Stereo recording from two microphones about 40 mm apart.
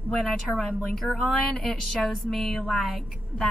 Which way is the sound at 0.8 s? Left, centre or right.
Left.